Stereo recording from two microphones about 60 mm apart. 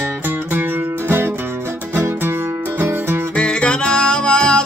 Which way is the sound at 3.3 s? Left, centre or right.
Centre.